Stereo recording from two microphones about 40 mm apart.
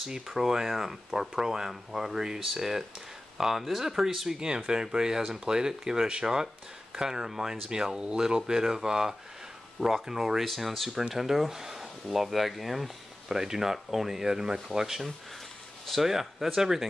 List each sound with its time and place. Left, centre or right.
0.0 s speech: centre
10.4 s speech: centre
13.3 s speech: centre